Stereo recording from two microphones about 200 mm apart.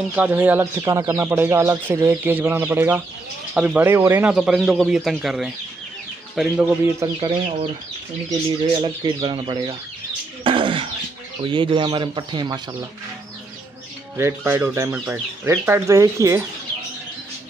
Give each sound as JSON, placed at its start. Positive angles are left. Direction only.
{"t": 0.1, "sound": "speech", "side_deg": -10}
{"t": 6.6, "sound": "speech", "side_deg": -15}
{"t": 7.2, "sound": "speech", "side_deg": -25}
{"t": 8.8, "sound": "speech", "side_deg": -25}
{"t": 10.4, "sound": "a sound", "side_deg": -25}
{"t": 11.4, "sound": "speech", "side_deg": -25}
{"t": 14.1, "sound": "speech", "side_deg": -10}